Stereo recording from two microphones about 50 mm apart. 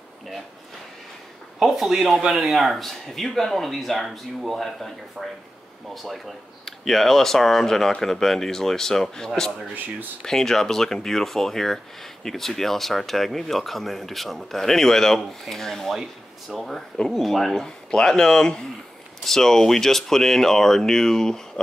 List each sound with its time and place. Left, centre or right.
1.6 s speech: centre
16.9 s speech: centre
17.2 s speech: centre